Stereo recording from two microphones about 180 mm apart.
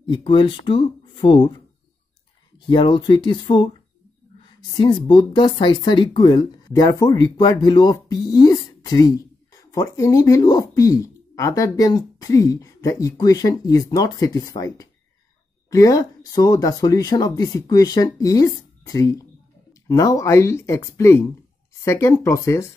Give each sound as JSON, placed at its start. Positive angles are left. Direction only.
{"t": 0.0, "sound": "speech", "side_deg": 30}
{"t": 2.7, "sound": "speech", "side_deg": 25}